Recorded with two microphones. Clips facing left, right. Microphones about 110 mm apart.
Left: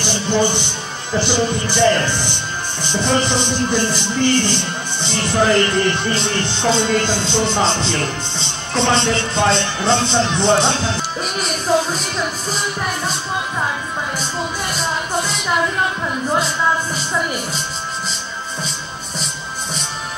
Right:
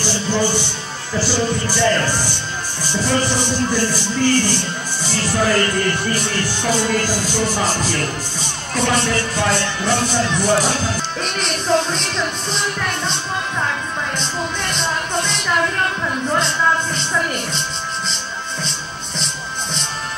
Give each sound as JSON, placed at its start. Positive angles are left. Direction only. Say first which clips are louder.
{"t": 0.0, "sound": "speech", "louder": "left 2 dB", "side_deg": 20}
{"t": 11.1, "sound": "speech", "louder": "even", "side_deg": 5}
{"t": 18.1, "sound": "music", "louder": "even", "side_deg": 5}